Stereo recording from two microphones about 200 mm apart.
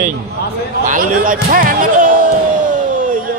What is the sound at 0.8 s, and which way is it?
Speech, 40° right (ahead or behind).